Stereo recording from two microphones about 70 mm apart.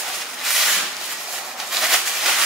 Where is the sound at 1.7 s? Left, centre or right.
Centre.